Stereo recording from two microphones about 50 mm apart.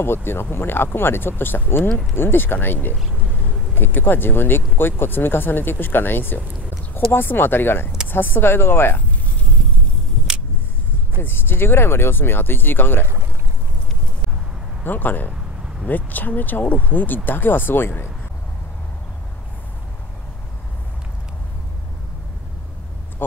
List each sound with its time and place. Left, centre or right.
0.0 s speech: left
11.2 s speech: left
14.8 s speech: left